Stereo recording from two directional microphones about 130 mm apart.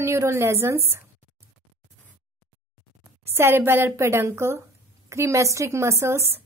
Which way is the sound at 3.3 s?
20° right (ahead or behind).